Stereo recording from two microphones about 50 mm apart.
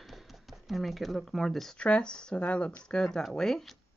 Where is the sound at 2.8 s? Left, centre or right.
Centre.